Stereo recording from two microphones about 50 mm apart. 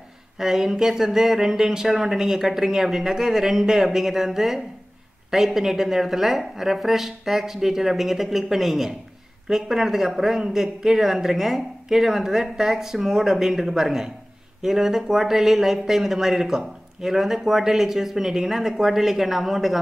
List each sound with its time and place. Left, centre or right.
0.4 s speech: centre